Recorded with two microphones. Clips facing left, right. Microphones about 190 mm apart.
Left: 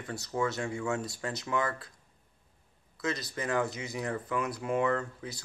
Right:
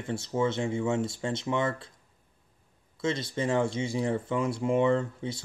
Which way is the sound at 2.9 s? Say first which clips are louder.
Right 4 dB; 25° right (ahead or behind).